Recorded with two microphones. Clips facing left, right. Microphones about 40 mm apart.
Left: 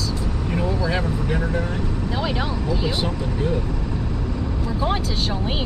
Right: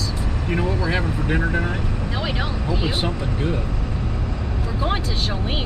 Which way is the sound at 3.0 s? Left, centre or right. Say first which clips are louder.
Even; right.